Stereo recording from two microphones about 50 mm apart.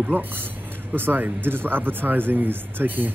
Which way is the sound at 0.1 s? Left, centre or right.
Right.